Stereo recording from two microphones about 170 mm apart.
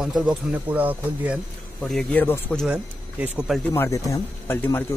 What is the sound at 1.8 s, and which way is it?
Speech, 5° left (ahead or behind).